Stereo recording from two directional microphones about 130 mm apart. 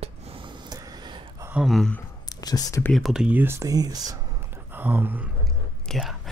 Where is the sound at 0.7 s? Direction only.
35° right (ahead or behind).